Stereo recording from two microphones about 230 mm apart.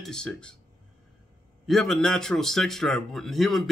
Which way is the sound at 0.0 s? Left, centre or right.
Centre.